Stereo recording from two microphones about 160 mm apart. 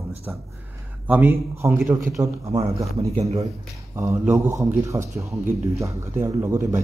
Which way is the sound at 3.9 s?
15° right (ahead or behind).